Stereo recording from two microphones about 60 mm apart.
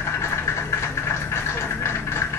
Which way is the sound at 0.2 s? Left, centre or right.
Left.